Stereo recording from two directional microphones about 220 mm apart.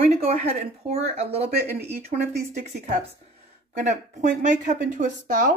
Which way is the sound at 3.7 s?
35° right (ahead or behind).